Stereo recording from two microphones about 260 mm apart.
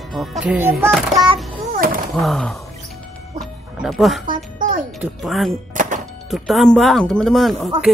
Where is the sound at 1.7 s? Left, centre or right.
Right.